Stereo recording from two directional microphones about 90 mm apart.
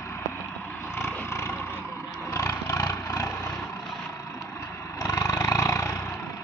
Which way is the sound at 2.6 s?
40° left (ahead or behind).